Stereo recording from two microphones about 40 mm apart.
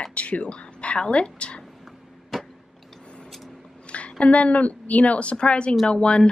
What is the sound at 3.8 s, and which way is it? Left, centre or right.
A woman's voice, left.